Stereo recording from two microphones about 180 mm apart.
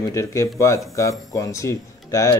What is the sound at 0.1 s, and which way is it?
Speech, 15° left (ahead or behind).